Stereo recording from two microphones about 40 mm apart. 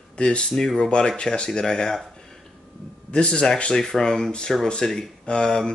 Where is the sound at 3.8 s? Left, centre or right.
Centre.